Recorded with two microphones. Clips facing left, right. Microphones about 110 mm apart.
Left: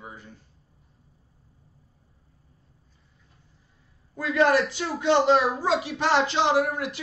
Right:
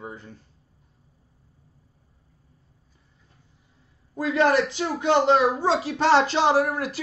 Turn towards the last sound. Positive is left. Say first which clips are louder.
# right 2 dB
turn(degrees=-40)  # may be behind; listen again after turning